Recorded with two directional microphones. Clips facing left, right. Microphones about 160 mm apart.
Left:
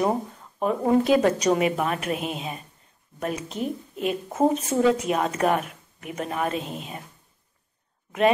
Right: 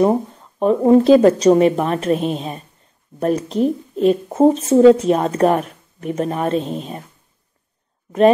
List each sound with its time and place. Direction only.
0.6 s speech: 30° right (ahead or behind)